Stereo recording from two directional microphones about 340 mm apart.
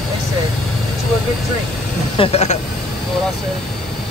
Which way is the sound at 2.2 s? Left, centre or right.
Centre.